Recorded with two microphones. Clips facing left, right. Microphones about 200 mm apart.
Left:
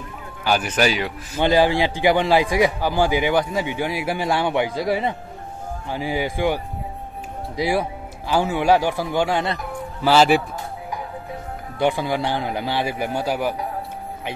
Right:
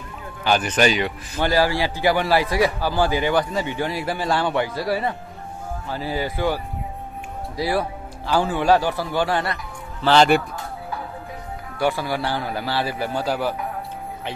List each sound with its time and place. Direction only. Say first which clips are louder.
0.4 s speech: right 1 dB; 10° left (ahead or behind)
1.4 s a man's voice: left 3 dB; 20° left (ahead or behind)
10.0 s speech: even; 5° left (ahead or behind)
11.8 s a man's voice: left 2 dB; 20° left (ahead or behind)